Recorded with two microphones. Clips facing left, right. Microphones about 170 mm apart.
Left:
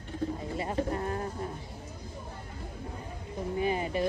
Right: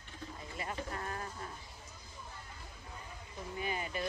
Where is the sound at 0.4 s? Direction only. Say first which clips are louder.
Left 8 dB; 30° left (ahead or behind).